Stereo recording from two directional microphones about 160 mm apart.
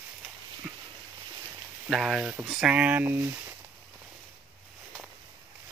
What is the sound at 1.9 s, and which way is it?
Speech, centre (ahead or behind).